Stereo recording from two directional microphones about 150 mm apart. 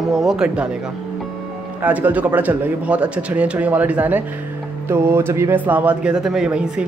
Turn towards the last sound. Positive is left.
turn(degrees=-5)  # may be behind; listen again after turning